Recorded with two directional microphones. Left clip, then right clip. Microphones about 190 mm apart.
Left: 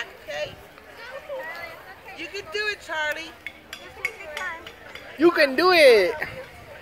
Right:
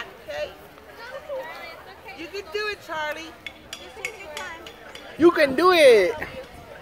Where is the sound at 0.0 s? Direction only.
30° right (ahead or behind).